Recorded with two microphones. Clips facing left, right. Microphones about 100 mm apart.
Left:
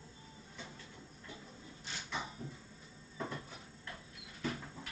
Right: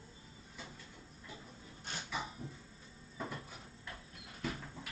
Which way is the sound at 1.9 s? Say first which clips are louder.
Right 2 dB; 50° right (ahead or behind).